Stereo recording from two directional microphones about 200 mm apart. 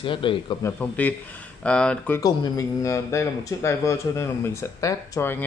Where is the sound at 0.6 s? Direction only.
10° left (ahead or behind).